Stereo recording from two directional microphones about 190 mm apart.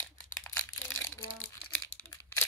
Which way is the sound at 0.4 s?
10° left (ahead or behind).